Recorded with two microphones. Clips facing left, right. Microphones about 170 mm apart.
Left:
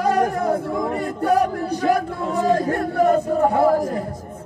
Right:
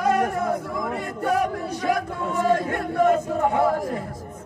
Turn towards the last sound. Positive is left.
turn(degrees=35)  # may be behind; listen again after turning